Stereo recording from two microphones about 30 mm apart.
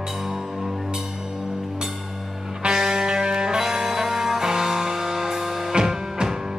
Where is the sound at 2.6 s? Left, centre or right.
Right.